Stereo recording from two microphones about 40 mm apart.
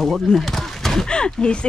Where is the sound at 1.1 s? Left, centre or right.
Left.